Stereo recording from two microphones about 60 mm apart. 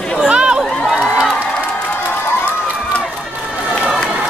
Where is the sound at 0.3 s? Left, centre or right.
Centre.